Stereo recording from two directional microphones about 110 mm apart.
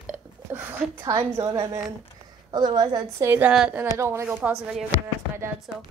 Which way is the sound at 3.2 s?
20° right (ahead or behind).